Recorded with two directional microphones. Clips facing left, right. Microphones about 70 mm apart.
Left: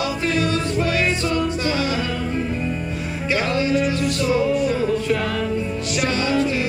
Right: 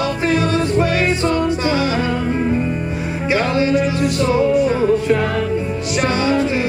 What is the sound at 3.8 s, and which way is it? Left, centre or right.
Music, right.